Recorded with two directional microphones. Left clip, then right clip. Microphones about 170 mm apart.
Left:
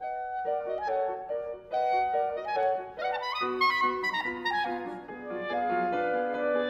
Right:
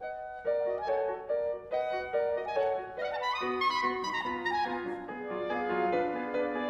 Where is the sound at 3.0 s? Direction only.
45° left (ahead or behind).